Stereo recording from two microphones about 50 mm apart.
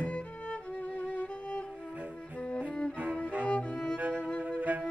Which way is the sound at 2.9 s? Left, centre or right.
Right.